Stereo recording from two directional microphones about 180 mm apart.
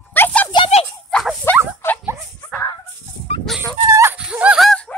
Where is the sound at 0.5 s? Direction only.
30° left (ahead or behind).